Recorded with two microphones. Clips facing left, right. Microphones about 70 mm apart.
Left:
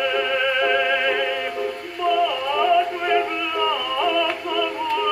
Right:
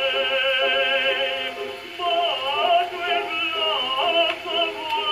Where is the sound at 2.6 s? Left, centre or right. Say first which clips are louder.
Left 2 dB; left.